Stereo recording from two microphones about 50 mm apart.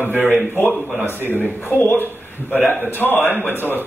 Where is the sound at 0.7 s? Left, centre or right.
Centre.